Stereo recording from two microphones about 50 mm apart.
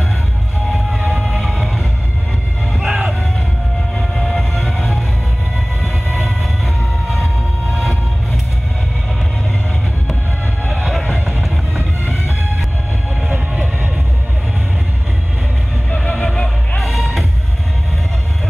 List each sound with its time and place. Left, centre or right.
0.9 s vehicle: centre
1.2 s music: centre
2.8 s music: right
4.1 s music: centre
10.7 s music: centre
16.0 s music: centre